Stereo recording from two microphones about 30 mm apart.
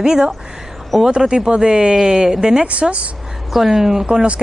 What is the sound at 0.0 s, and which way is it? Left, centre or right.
Speech, right.